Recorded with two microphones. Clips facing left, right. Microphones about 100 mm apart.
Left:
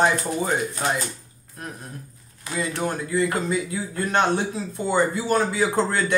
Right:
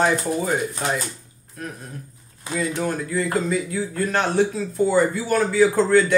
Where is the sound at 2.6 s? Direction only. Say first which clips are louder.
Right 2 dB; 25° left (ahead or behind).